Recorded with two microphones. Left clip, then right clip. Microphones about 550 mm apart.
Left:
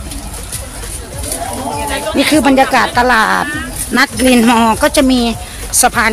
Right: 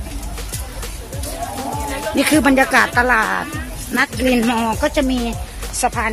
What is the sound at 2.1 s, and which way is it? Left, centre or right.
Speech, right.